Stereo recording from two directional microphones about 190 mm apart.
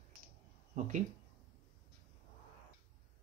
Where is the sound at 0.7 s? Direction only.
40° right (ahead or behind).